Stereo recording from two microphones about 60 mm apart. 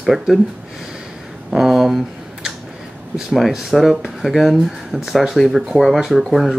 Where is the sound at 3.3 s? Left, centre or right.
Centre.